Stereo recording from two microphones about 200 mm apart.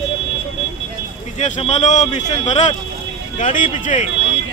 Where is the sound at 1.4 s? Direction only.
35° left (ahead or behind).